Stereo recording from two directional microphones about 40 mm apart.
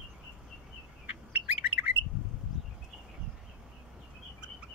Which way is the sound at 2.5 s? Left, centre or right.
Centre.